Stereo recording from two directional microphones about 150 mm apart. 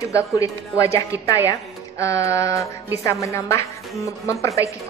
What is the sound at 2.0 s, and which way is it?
Speech, 20° left (ahead or behind).